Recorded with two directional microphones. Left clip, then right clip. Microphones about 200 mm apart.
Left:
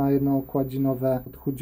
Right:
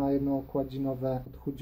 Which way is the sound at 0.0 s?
30° left (ahead or behind).